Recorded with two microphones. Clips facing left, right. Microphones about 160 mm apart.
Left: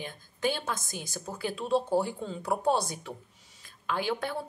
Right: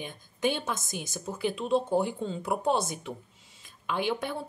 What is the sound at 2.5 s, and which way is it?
Speech, 20° right (ahead or behind).